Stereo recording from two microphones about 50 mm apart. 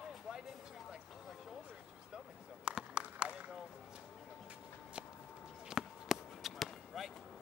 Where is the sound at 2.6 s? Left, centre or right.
Centre.